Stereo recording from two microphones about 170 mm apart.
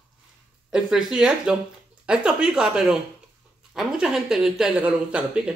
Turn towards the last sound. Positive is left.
turn(degrees=-5)  # may be behind; listen again after turning